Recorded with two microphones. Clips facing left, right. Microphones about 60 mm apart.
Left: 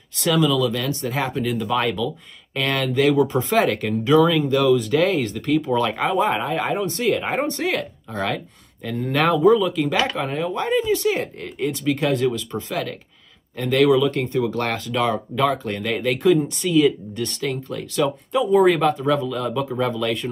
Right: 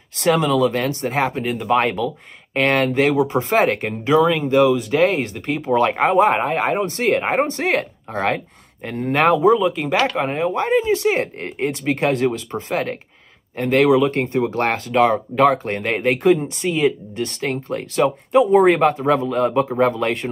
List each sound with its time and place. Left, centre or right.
0.2 s speech: right
11.3 s speech: right